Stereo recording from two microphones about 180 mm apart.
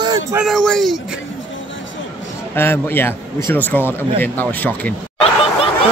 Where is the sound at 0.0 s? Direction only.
20° right (ahead or behind).